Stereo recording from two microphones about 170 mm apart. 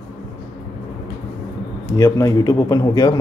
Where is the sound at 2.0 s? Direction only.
20° left (ahead or behind).